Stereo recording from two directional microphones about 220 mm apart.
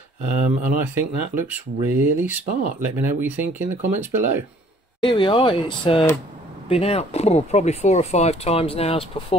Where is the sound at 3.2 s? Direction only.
10° right (ahead or behind).